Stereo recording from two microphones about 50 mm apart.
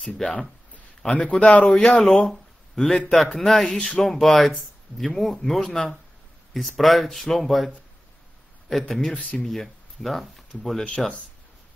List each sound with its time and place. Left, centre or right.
0.2 s speech: centre
1.2 s speech: left; by 9.1 s centre
9.1 s speech: left
9.4 s speech: centre